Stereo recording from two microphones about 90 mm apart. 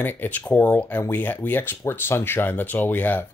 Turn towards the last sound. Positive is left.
turn(degrees=20)  # may be behind; listen again after turning